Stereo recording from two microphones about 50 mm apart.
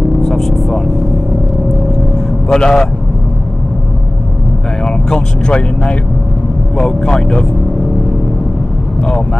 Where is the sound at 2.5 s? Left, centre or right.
Centre.